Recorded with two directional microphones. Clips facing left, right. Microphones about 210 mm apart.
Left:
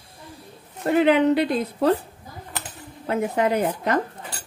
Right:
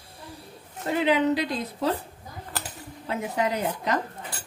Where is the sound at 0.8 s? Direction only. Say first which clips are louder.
Left 5 dB; 60° left (ahead or behind).